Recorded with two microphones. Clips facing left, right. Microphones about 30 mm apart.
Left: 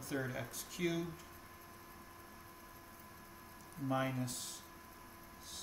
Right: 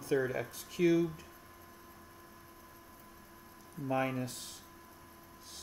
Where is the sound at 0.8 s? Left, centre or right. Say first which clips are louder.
Right 10 dB; right.